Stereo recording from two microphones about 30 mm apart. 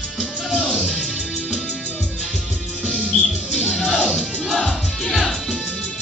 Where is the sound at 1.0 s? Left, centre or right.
Centre.